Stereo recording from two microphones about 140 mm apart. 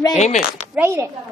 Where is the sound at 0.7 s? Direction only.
20° right (ahead or behind).